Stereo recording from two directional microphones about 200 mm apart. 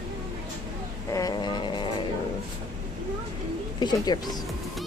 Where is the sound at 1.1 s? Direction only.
20° left (ahead or behind).